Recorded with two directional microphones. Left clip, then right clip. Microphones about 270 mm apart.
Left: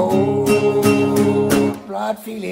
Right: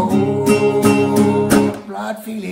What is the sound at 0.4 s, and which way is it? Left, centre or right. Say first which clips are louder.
Music: right 4 dB; centre.